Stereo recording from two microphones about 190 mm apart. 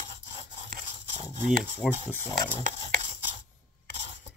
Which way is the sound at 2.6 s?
40° right (ahead or behind).